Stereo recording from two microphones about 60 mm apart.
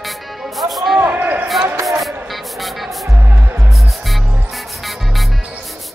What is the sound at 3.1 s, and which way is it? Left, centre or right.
Music, right.